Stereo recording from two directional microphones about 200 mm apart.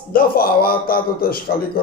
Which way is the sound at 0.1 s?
50° left (ahead or behind).